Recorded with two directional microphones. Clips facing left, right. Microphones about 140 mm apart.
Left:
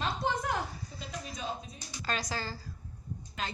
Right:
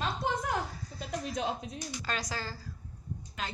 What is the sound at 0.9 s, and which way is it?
Speech, 70° right (ahead or behind).